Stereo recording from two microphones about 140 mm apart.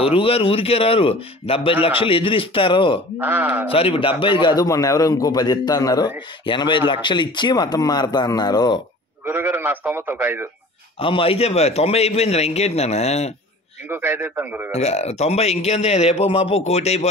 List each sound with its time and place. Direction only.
0.0 s speech: 40° left (ahead or behind)
3.2 s a man's voice: 10° right (ahead or behind)
3.7 s a man's voice: 40° left (ahead or behind)
9.2 s a man's voice: 15° right (ahead or behind)
11.0 s speech: 40° left (ahead or behind)
13.8 s a man's voice: 15° right (ahead or behind)
14.7 s speech: 50° left (ahead or behind)